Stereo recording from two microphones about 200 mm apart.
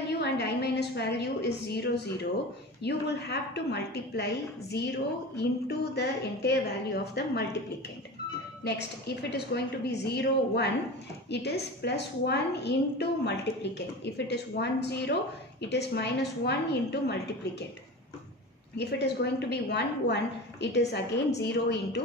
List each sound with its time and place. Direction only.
0.2 s a woman's voice: 55° left (ahead or behind)
8.6 s a woman's voice: 55° left (ahead or behind)
18.8 s a woman's voice: 60° left (ahead or behind)